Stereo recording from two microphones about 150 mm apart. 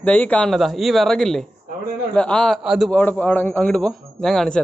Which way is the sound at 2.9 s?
10° left (ahead or behind).